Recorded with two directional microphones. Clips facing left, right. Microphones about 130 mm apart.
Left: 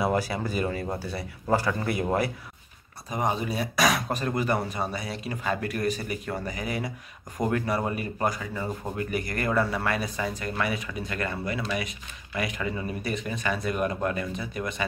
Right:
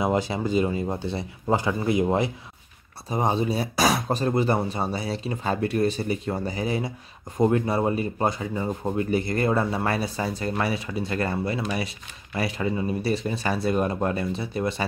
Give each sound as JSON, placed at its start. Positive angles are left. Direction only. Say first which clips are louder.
{"t": 0.0, "sound": "rub", "louder": "right 2 dB", "side_deg": -20}
{"t": 12.4, "sound": "speech", "louder": "right 4 dB", "side_deg": -30}